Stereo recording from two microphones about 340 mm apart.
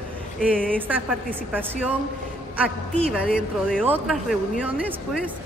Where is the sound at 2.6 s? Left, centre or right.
Centre.